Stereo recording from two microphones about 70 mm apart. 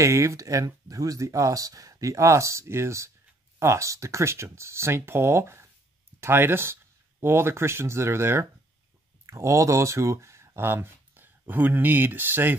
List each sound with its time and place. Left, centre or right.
0.0 s speech: right